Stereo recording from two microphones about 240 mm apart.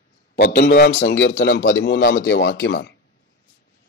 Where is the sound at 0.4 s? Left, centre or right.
Left.